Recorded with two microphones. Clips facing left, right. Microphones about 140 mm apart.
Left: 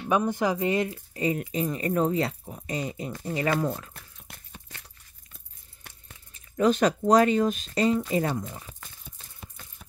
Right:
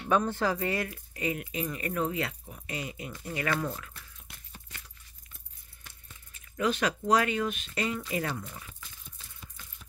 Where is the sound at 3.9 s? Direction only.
50° left (ahead or behind).